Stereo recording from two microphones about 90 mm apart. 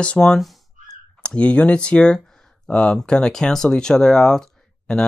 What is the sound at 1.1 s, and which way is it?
Speech, 10° left (ahead or behind).